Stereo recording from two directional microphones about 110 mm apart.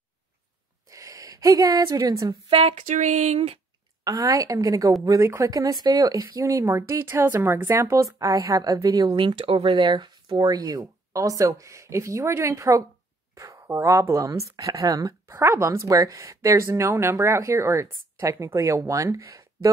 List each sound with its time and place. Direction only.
0.8 s a sound: 30° right (ahead or behind)
2.5 s speech: 75° right (ahead or behind)
4.0 s a woman's voice: 35° right (ahead or behind)
9.1 s a woman's voice: 50° right (ahead or behind); by 19.7 s 30° right (ahead or behind)